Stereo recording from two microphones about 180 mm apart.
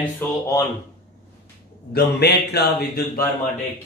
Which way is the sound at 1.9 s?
60° left (ahead or behind).